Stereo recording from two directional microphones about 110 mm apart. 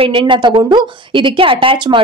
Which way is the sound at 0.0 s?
50° right (ahead or behind).